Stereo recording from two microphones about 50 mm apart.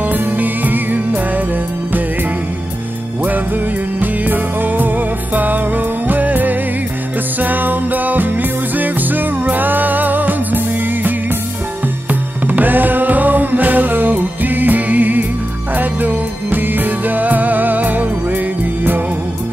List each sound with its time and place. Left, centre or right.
0.0 s music: right
3.2 s music: right